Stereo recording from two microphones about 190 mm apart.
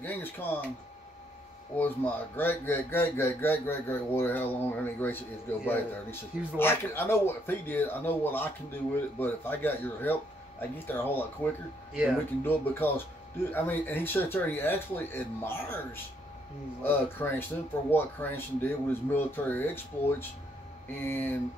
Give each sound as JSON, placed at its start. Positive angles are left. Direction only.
{"t": 0.0, "sound": "speech", "side_deg": 10}
{"t": 1.8, "sound": "speech", "side_deg": 10}